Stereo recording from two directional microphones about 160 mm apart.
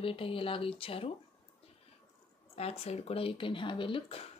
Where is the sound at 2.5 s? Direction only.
40° left (ahead or behind).